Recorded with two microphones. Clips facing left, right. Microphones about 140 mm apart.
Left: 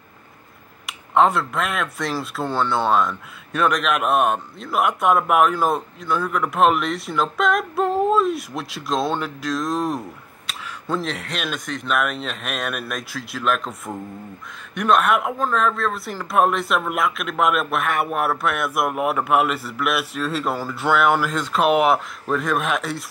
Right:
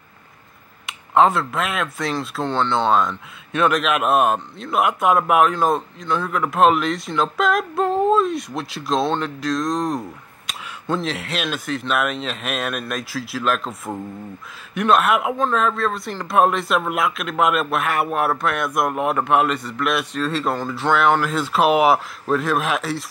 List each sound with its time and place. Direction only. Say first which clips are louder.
0.8 s speech: right 1 dB; centre (ahead or behind)
21.4 s speech: right 1 dB; 5° right (ahead or behind)